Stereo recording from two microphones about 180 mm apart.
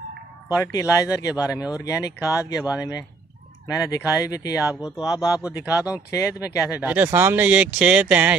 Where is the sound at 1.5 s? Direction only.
5° right (ahead or behind).